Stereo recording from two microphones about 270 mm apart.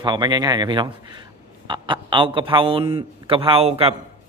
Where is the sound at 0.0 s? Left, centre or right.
Centre.